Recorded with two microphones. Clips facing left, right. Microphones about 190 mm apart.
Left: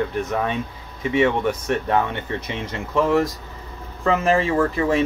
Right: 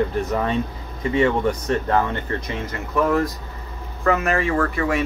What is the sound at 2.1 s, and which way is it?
Speech, 20° left (ahead or behind).